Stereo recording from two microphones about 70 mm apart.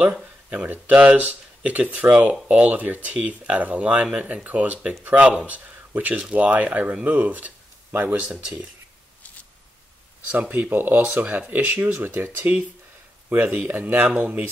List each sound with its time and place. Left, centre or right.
0.0 s a sound: centre
0.7 s speech: centre
8.3 s speech: centre
10.3 s speech: right